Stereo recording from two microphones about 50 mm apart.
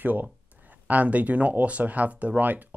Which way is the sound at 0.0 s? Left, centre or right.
Right.